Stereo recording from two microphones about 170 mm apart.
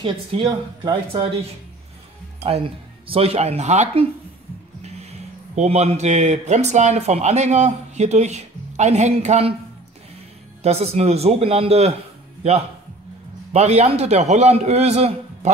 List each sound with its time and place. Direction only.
0.0 s speech: 30° right (ahead or behind)
3.1 s speech: 35° right (ahead or behind)
4.8 s music: 40° right (ahead or behind)
5.6 s speech: 40° right (ahead or behind)
10.6 s speech: 40° right (ahead or behind)
13.5 s speech: 40° right (ahead or behind)